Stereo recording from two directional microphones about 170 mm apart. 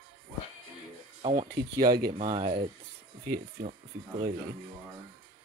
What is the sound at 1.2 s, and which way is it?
Speech, 35° right (ahead or behind).